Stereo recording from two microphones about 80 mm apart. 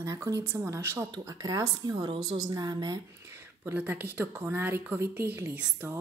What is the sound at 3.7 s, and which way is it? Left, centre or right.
Speech, right.